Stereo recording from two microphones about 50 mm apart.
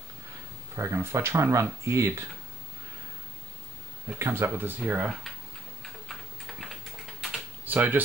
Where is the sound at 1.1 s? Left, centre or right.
Right.